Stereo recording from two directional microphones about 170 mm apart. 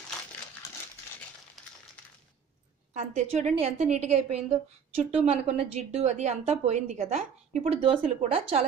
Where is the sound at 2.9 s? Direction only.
40° right (ahead or behind).